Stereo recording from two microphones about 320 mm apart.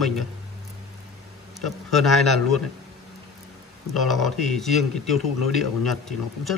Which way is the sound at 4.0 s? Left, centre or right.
Centre.